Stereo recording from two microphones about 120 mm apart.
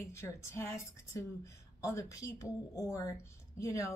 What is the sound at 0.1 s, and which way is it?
A woman's voice, 20° left (ahead or behind).